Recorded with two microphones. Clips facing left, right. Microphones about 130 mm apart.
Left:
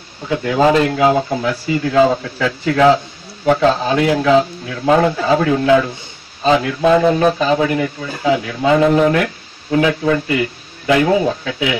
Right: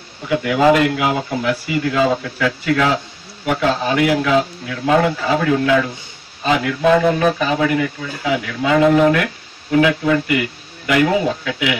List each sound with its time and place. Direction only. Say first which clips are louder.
0.4 s speech: left 1 dB; 30° left (ahead or behind)